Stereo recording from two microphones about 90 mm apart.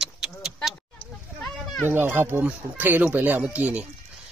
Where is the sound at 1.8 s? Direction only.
25° right (ahead or behind).